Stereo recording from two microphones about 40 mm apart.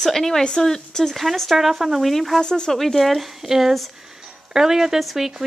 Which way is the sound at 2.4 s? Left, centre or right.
Centre.